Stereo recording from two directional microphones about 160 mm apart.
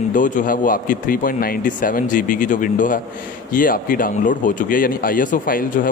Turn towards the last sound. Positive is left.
turn(degrees=60)  # may be behind; listen again after turning